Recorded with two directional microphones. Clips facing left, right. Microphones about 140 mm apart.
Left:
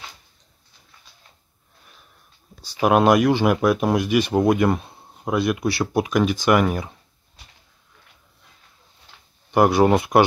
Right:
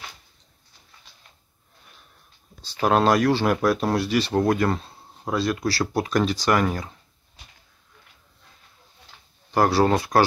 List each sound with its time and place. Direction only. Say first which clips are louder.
2.6 s speech: left 3 dB; 15° left (ahead or behind)
9.5 s speech: left 3 dB; 15° left (ahead or behind)